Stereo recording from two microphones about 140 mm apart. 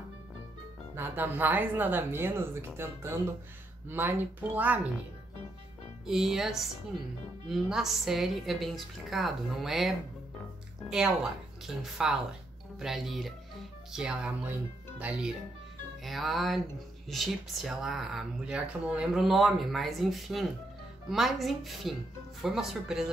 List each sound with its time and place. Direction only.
0.9 s speech: 15° right (ahead or behind)
6.0 s speech: 5° right (ahead or behind)